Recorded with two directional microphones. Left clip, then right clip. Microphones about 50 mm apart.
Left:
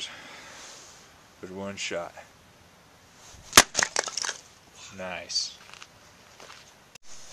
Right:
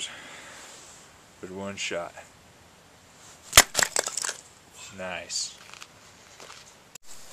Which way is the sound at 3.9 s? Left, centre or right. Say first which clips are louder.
Even; left.